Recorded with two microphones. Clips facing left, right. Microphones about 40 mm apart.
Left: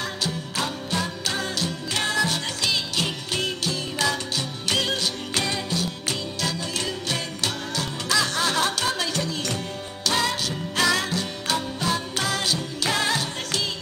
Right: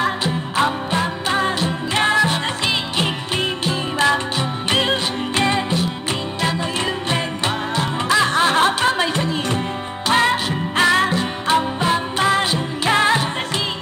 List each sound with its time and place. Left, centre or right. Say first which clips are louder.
0.0 s music: right 8 dB; right
7.1 s music: right 7 dB; right